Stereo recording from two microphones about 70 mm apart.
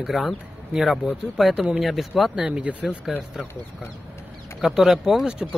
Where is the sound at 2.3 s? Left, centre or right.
Centre.